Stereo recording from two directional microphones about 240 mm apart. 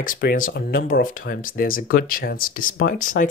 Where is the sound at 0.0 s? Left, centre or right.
Left.